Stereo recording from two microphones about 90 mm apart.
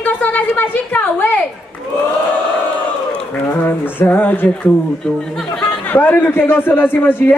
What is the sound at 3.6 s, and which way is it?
A man's voice, 25° left (ahead or behind).